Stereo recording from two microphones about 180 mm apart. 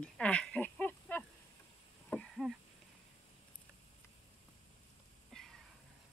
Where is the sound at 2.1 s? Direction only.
Centre (ahead or behind).